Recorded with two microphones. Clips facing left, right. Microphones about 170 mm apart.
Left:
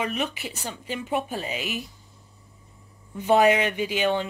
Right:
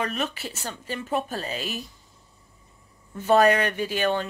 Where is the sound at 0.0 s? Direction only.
15° left (ahead or behind).